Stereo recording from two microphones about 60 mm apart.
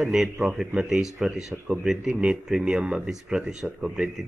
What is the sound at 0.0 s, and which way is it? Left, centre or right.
Speech, centre.